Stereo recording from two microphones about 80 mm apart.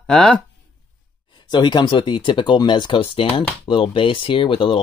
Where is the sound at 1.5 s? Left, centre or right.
Left.